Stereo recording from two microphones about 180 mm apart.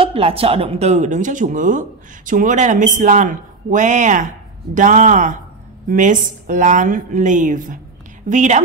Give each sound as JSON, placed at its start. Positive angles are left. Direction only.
{"t": 0.0, "sound": "a woman's voice", "side_deg": -35}